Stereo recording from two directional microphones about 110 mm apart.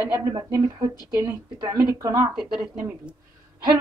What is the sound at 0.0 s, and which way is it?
Speech, 25° right (ahead or behind).